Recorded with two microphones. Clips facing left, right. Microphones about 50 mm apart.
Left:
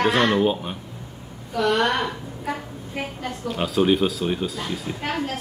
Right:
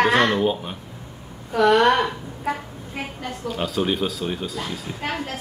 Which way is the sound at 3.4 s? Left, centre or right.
Centre.